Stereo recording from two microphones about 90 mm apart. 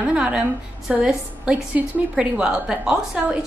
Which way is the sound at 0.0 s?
10° right (ahead or behind).